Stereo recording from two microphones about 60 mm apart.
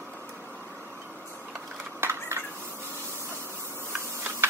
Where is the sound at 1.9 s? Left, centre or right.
Right.